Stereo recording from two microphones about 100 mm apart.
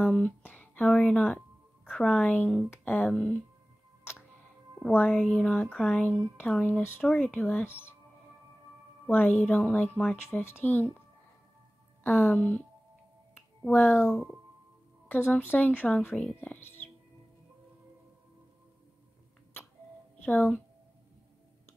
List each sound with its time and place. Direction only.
0.0 s speech: 15° left (ahead or behind)
4.9 s speech: 15° left (ahead or behind)
9.0 s speech: 20° left (ahead or behind)
12.0 s speech: 20° left (ahead or behind)
13.7 s speech: 20° left (ahead or behind)
15.0 s speech: 20° left (ahead or behind)
20.2 s speech: 15° left (ahead or behind)